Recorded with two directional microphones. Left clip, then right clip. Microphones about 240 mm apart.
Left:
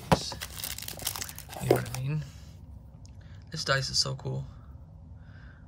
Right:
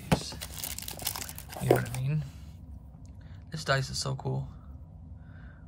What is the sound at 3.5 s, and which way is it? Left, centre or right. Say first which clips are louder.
Speech: left 1 dB; centre.